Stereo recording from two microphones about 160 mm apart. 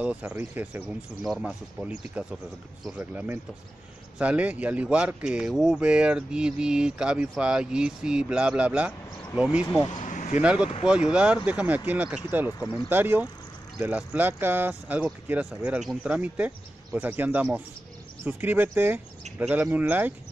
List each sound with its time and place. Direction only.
0.0 s speech: 10° right (ahead or behind)
10.0 s a sound: 50° left (ahead or behind)
10.4 s speech: 5° right (ahead or behind)